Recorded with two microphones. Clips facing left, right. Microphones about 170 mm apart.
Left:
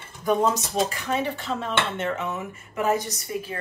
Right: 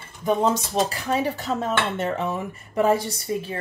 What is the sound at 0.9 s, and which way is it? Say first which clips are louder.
Speech: right 2 dB; 40° right (ahead or behind).